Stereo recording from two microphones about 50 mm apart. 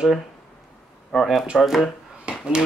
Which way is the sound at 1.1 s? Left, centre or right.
Centre.